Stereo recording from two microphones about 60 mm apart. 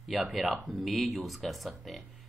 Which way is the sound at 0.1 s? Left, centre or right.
Centre.